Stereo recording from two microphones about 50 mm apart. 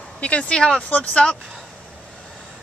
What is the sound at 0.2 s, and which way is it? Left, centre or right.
Speech, left.